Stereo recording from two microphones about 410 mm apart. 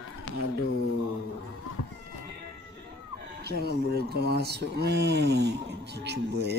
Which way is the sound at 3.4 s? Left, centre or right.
Right.